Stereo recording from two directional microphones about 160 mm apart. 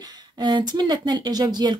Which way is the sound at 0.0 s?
25° right (ahead or behind).